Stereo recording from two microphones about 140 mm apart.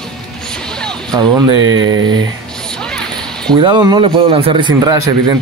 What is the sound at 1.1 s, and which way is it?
A man's voice, 30° right (ahead or behind).